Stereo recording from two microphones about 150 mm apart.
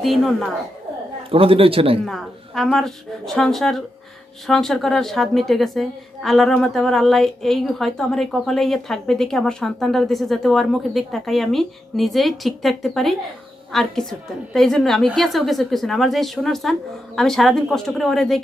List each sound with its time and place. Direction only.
0.0 s a woman's voice: centre (ahead or behind)
1.3 s a man's voice: 40° right (ahead or behind)
2.0 s a woman's voice: centre (ahead or behind)